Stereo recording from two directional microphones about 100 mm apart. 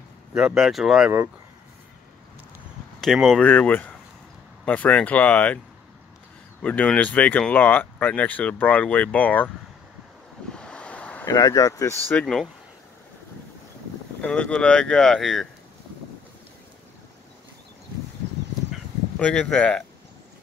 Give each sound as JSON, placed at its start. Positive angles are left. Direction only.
{"t": 0.4, "sound": "speech", "side_deg": 0}
{"t": 3.0, "sound": "speech", "side_deg": 5}
{"t": 3.4, "sound": "speech", "side_deg": 15}
{"t": 6.6, "sound": "speech", "side_deg": 15}
{"t": 10.5, "sound": "waves", "side_deg": 10}
{"t": 11.2, "sound": "speech", "side_deg": 40}
{"t": 12.2, "sound": "speech", "side_deg": 5}
{"t": 14.2, "sound": "speech", "side_deg": 15}
{"t": 19.1, "sound": "speech", "side_deg": 10}